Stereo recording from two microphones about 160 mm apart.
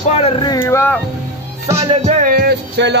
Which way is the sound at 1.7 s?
20° right (ahead or behind).